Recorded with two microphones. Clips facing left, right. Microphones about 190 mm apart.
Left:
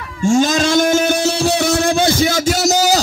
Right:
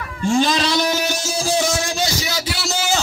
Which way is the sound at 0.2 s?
45° left (ahead or behind).